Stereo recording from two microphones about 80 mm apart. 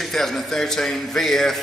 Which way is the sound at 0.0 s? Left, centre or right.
Centre.